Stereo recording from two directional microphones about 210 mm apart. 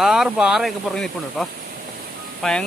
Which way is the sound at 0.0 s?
Centre (ahead or behind).